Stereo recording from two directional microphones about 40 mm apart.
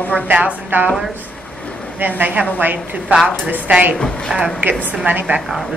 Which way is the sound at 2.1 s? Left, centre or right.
Right.